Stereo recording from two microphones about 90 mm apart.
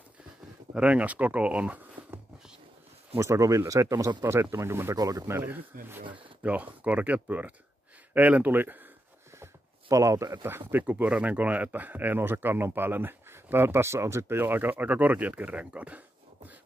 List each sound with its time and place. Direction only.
0.7 s speech: 15° right (ahead or behind)
3.2 s speech: 35° right (ahead or behind)
4.9 s speech: 40° right (ahead or behind)
5.2 s speech: 25° right (ahead or behind)
9.4 s a sound: 35° right (ahead or behind)
10.7 s speech: 20° right (ahead or behind)